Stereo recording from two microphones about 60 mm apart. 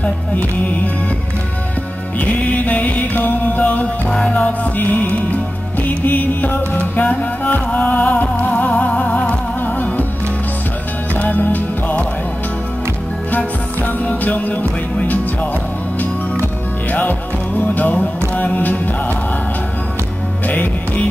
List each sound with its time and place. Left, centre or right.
2.1 s music: left
11.1 s music: left
13.3 s music: left
16.9 s music: left
20.4 s music: left